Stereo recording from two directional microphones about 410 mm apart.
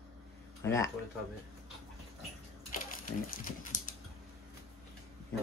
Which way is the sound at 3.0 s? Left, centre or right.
Centre.